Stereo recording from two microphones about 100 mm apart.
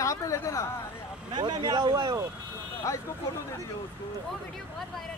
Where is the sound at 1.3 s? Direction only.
50° right (ahead or behind).